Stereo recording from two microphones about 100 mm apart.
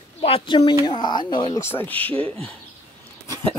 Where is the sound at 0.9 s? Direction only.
45° left (ahead or behind).